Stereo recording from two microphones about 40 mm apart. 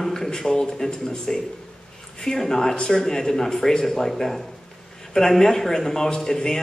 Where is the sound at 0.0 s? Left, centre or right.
Centre.